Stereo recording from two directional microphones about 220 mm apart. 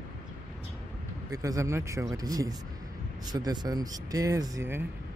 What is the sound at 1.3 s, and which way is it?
Speech, 15° right (ahead or behind).